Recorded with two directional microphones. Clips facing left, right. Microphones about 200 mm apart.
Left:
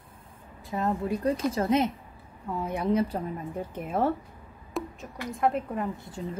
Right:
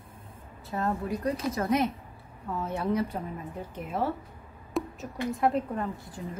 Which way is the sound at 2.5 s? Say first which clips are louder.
Left 2 dB; 15° left (ahead or behind).